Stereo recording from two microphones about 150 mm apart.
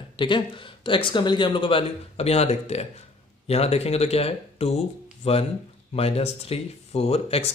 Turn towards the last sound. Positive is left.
turn(degrees=45)  # may be behind; listen again after turning